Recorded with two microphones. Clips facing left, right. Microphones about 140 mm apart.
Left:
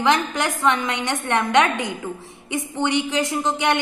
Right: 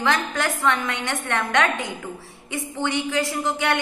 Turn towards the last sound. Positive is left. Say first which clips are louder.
# left 3 dB
turn(degrees=20)  # may be behind; listen again after turning